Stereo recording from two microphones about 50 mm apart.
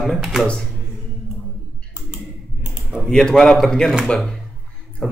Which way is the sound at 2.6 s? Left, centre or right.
Right.